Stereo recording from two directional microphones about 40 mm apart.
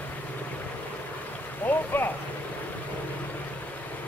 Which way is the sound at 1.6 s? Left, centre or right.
Left.